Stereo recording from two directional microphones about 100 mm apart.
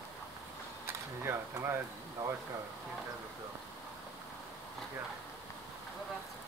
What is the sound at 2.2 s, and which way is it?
Speech, 25° right (ahead or behind).